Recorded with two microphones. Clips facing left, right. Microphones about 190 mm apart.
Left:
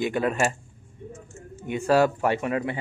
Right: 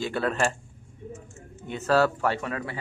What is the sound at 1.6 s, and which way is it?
Speech, 15° left (ahead or behind).